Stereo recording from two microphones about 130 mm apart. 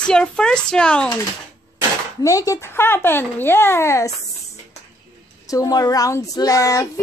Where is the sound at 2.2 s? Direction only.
25° left (ahead or behind).